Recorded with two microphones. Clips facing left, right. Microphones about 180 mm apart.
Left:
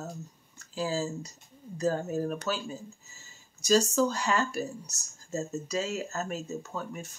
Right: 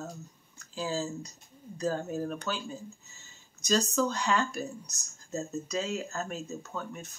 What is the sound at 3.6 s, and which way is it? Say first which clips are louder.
Speech: left 3 dB; 5° left (ahead or behind).